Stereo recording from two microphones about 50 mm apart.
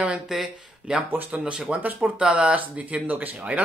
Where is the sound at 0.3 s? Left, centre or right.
Centre.